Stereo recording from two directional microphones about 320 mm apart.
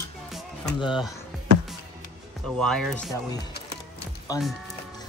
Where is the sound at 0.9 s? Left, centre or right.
Centre.